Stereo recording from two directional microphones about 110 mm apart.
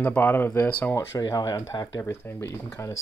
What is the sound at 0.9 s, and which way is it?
Speech, 30° left (ahead or behind).